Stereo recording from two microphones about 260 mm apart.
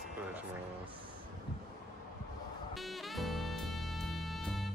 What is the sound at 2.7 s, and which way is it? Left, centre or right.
Music, centre.